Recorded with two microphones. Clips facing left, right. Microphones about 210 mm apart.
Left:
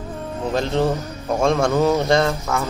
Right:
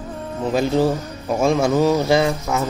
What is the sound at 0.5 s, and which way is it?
A man's voice, 5° right (ahead or behind).